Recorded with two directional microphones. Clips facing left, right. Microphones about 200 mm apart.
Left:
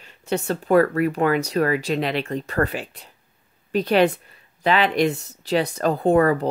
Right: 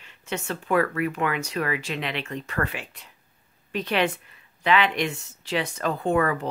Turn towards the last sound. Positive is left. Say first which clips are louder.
# left 6 dB
turn(degrees=35)  # may be behind; listen again after turning